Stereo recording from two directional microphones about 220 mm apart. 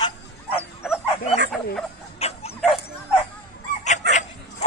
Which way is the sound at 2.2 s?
30° left (ahead or behind).